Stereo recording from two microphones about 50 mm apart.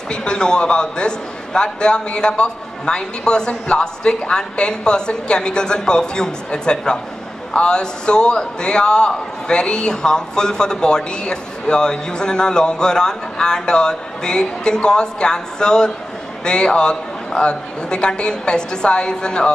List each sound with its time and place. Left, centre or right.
0.1 s a man's voice: centre